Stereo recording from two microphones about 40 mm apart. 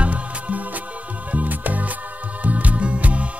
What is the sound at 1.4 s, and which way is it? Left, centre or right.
Music, right.